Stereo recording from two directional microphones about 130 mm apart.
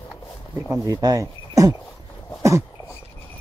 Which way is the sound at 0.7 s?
25° right (ahead or behind).